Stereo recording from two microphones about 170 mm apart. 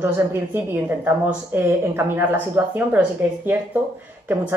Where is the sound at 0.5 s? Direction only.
15° right (ahead or behind).